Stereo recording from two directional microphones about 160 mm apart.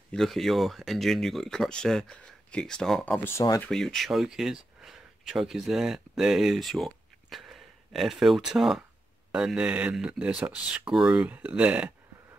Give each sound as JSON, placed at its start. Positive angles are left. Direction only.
{"t": 0.1, "sound": "speech", "side_deg": 0}
{"t": 3.3, "sound": "speech", "side_deg": 15}
{"t": 3.7, "sound": "speech", "side_deg": 0}